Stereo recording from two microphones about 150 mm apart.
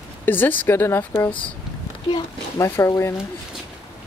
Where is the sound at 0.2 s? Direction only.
15° left (ahead or behind).